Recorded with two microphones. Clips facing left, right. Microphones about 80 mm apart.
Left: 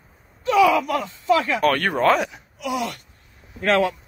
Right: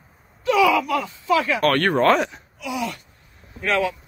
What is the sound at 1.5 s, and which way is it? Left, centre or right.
Speech, centre.